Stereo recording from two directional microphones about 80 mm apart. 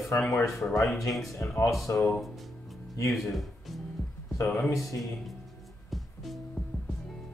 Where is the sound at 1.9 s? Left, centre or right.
Left.